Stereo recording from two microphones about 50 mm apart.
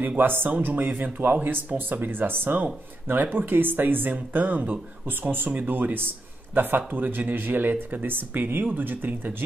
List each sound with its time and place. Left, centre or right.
0.2 s speech: right